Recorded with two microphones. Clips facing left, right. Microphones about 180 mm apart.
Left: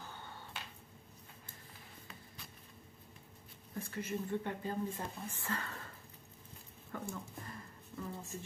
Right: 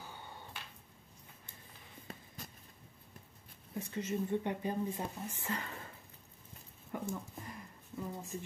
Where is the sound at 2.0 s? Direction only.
45° right (ahead or behind).